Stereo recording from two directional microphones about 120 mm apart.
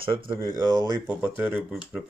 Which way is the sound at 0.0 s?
45° right (ahead or behind).